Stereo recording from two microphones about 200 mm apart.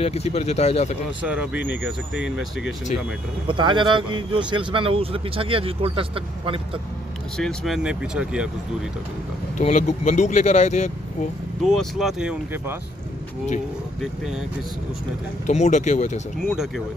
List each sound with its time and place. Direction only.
0.0 s speech: 30° left (ahead or behind)
1.2 s speech: 5° right (ahead or behind)
3.4 s speech: 25° right (ahead or behind)
7.3 s speech: centre (ahead or behind)
9.6 s speech: 40° left (ahead or behind)
11.6 s speech: centre (ahead or behind)
15.4 s speech: 35° left (ahead or behind)